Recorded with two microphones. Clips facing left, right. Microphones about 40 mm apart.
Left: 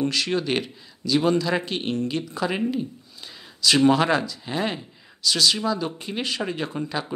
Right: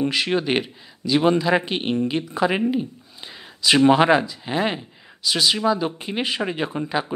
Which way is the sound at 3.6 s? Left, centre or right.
Right.